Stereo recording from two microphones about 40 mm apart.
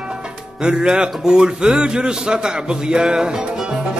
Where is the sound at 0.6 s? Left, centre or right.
Right.